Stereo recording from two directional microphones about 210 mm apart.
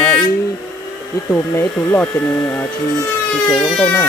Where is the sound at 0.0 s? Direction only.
15° left (ahead or behind).